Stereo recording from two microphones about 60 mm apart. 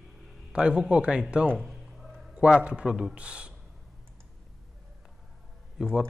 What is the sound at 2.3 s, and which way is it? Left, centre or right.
Speech, centre.